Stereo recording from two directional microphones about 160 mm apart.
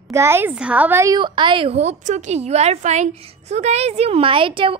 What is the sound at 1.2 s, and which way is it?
Speech, 30° right (ahead or behind).